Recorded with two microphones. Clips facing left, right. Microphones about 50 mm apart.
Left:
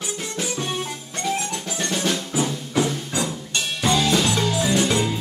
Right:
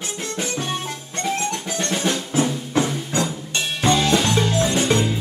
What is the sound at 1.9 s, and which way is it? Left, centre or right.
Music, centre.